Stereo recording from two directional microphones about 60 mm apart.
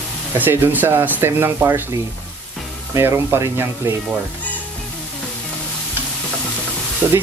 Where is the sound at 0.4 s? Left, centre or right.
Right.